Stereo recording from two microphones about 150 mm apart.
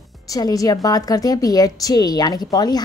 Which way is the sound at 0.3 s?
25° left (ahead or behind).